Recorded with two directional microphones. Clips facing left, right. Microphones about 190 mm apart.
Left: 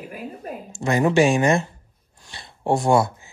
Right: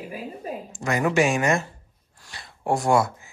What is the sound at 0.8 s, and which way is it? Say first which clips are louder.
Speech: left 4 dB; 25° left (ahead or behind).